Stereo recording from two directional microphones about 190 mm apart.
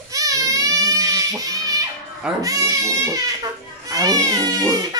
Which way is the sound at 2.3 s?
20° right (ahead or behind).